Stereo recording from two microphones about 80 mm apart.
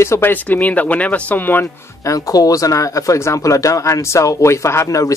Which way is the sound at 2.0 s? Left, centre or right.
Left.